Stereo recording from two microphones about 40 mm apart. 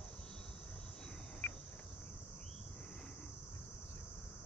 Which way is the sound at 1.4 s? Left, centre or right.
Left.